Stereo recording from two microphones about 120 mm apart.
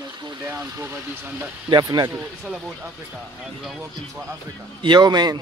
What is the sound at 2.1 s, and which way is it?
Speech, 15° right (ahead or behind).